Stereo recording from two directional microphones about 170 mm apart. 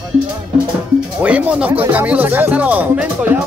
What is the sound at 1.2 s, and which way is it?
Speech, 10° right (ahead or behind).